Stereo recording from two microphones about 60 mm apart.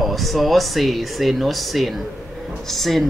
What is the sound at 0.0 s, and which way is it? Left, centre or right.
Speech, centre.